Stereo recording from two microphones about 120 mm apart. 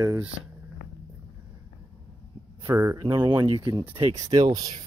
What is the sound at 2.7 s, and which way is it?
Speech, 30° right (ahead or behind).